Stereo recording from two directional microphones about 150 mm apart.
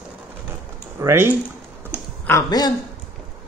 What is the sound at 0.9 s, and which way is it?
Speech, 15° right (ahead or behind).